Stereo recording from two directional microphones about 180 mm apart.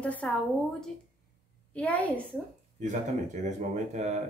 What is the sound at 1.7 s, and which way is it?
Speech, 5° left (ahead or behind).